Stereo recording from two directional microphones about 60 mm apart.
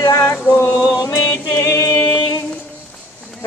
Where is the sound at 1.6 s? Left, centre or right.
Left.